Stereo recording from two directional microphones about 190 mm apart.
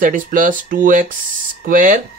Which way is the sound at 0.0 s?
45° right (ahead or behind).